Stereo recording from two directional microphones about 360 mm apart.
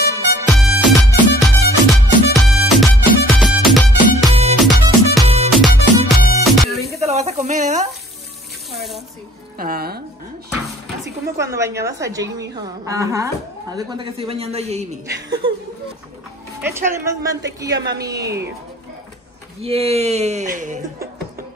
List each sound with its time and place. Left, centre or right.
0.1 s music: centre
4.3 s music: centre
4.6 s music: centre
7.1 s sizzle: centre
9.6 s speech: right
11.3 s a woman's voice: centre
16.6 s a woman's voice: centre
19.6 s a woman's voice: centre